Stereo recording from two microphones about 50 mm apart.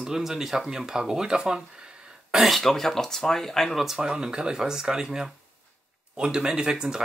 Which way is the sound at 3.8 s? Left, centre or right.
Centre.